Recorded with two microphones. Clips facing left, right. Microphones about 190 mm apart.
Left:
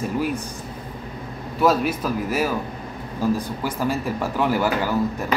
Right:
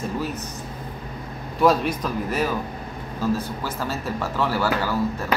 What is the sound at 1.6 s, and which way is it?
Speech, 5° left (ahead or behind).